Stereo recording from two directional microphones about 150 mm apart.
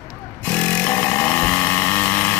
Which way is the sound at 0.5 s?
10° left (ahead or behind).